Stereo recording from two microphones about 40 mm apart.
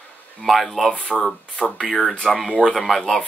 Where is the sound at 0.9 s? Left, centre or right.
Left.